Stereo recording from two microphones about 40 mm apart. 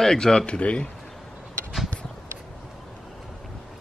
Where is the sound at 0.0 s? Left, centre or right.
Centre.